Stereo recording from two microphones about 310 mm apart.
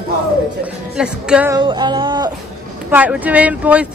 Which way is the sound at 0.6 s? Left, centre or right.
Centre.